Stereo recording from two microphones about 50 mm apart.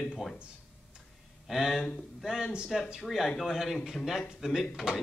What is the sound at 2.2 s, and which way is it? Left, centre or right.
A man's voice, centre.